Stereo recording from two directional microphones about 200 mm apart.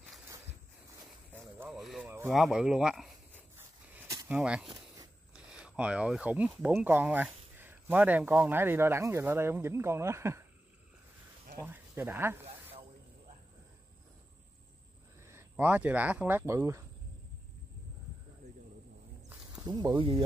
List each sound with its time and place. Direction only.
1.6 s a sound: 5° right (ahead or behind)
2.3 s speech: centre (ahead or behind)
3.5 s a sound: 15° right (ahead or behind)
5.3 s speech: 5° right (ahead or behind)
11.6 s speech: 10° right (ahead or behind)
15.2 s speech: 10° right (ahead or behind)
19.5 s speech: 20° right (ahead or behind)